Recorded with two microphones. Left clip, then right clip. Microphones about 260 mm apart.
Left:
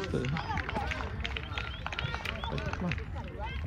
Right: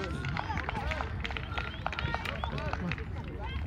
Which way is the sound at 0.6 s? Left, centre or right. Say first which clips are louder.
Even; right.